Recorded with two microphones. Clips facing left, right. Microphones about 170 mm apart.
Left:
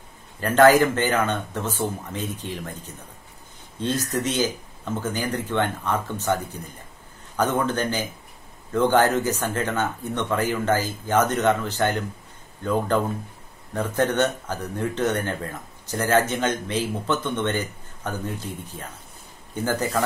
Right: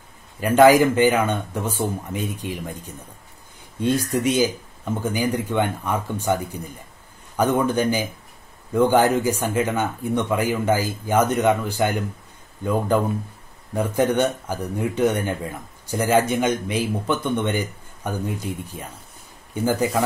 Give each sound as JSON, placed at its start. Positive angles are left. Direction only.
{"t": 0.4, "sound": "speech", "side_deg": -10}